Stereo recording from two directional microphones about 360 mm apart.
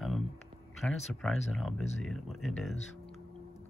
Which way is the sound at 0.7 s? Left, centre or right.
Centre.